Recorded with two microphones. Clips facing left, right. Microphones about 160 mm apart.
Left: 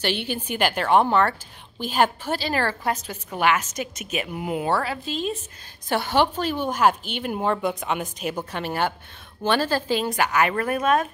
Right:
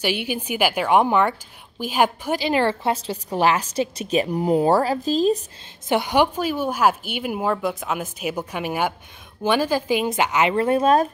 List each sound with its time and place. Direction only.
0.0 s a woman's voice: 10° right (ahead or behind); by 5.4 s 40° right (ahead or behind)
5.9 s a woman's voice: 15° right (ahead or behind)